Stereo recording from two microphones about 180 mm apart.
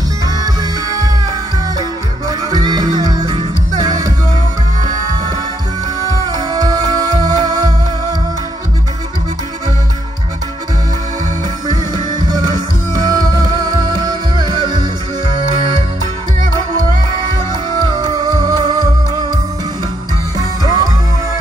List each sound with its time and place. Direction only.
0.4 s music: 20° right (ahead or behind)
6.2 s music: 20° right (ahead or behind)
11.6 s music: 25° right (ahead or behind)
17.8 s music: 25° right (ahead or behind)
20.3 s music: 20° right (ahead or behind)